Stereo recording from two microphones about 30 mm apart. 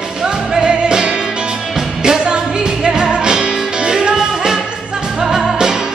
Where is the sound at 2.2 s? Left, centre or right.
Right.